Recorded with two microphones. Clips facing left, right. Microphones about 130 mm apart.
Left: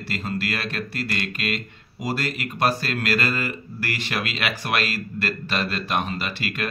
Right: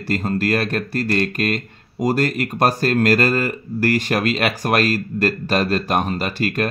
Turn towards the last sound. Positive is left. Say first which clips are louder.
# right 8 dB
turn(degrees=-45)  # may be behind; listen again after turning